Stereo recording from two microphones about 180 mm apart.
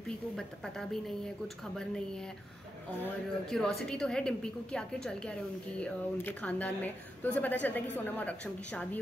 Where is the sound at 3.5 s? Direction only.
5° left (ahead or behind).